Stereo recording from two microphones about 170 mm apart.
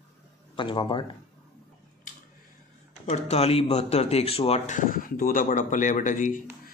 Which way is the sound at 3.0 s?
40° left (ahead or behind).